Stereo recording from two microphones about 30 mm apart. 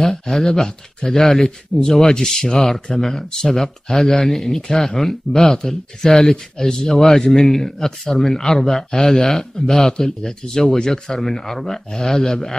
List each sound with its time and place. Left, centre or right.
0.1 s speech: centre
0.5 s speech: left
6.9 s speech: centre